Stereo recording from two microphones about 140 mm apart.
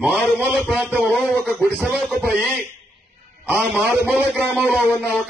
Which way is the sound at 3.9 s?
10° right (ahead or behind).